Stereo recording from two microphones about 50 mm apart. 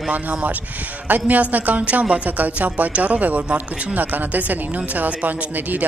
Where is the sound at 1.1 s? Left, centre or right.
Right.